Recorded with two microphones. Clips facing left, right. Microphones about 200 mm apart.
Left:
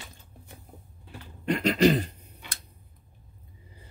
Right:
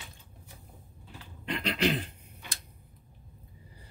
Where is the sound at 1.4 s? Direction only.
45° left (ahead or behind).